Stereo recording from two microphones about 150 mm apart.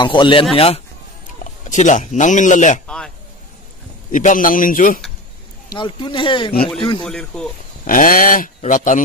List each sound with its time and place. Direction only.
0.0 s speech: 30° left (ahead or behind)
1.4 s speech: 55° left (ahead or behind)
4.1 s a man's voice: 60° left (ahead or behind)
5.8 s speech: 35° left (ahead or behind)
7.1 s a man's voice: 5° left (ahead or behind)
7.8 s speech: 70° left (ahead or behind)
8.5 s a man's voice: 60° left (ahead or behind)